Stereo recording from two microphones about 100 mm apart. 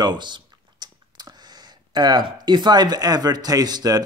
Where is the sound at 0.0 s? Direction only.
45° right (ahead or behind).